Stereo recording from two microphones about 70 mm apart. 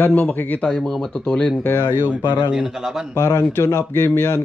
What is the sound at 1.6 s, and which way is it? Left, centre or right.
Speech, left.